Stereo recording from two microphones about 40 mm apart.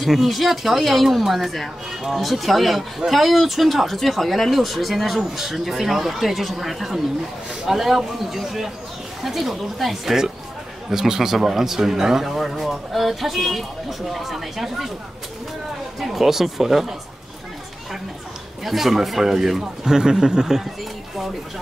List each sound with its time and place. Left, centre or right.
0.0 s a man's voice: centre
16.0 s a man's voice: centre
18.6 s a man's voice: centre
19.6 s a man's voice: centre